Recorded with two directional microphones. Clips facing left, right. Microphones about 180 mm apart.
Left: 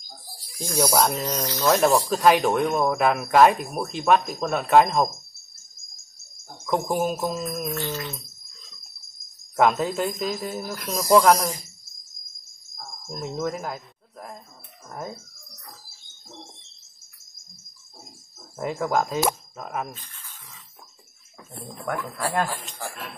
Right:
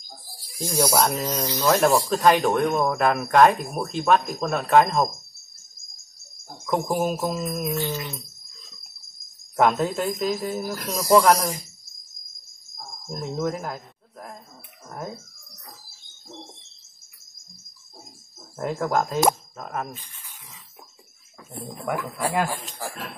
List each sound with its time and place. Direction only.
0.6 s speech: 5° right (ahead or behind)
1.4 s speech: 15° right (ahead or behind)
2.0 s speech: 5° left (ahead or behind)
6.6 s speech: centre (ahead or behind)
7.6 s speech: 15° right (ahead or behind)
9.6 s speech: centre (ahead or behind)
13.2 s speech: centre (ahead or behind)
18.6 s speech: 5° left (ahead or behind)
19.9 s rub: 15° right (ahead or behind)
21.5 s speech: 10° right (ahead or behind)